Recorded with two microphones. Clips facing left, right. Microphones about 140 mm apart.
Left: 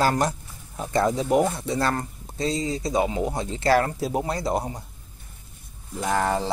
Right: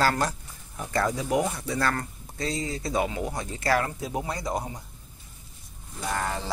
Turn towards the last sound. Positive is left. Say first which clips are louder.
# left 6 dB
turn(degrees=90)